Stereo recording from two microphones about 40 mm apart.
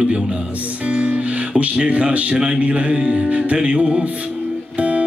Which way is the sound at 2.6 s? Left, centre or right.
Right.